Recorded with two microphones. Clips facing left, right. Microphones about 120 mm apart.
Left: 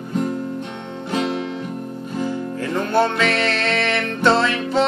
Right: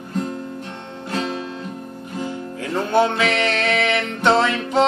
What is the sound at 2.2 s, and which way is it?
Music, 15° right (ahead or behind).